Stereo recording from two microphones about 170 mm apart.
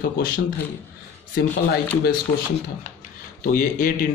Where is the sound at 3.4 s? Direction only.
55° left (ahead or behind).